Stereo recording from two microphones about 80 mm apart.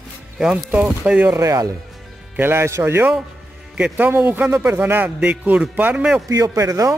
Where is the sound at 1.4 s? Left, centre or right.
Right.